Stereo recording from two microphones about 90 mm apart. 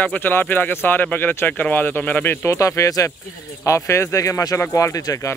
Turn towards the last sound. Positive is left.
turn(degrees=40)  # may be behind; listen again after turning